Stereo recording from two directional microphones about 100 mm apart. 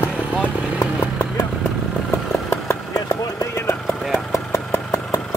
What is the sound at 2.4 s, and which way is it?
Vehicle, 30° left (ahead or behind).